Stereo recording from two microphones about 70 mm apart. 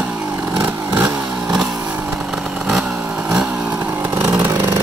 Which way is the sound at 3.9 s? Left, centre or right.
Right.